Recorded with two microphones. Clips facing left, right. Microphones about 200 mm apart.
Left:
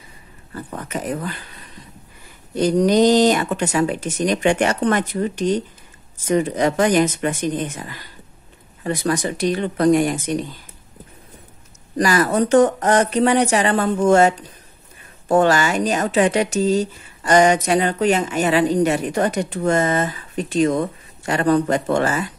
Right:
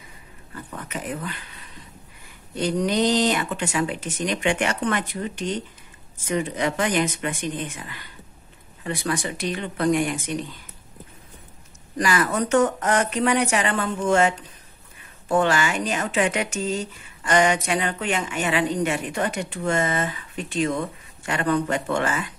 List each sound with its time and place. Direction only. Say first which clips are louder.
0.7 s speech: left 6 dB; 40° left (ahead or behind)
2.5 s speech: left 7 dB; 40° left (ahead or behind)
12.0 s speech: left 5 dB; 40° left (ahead or behind)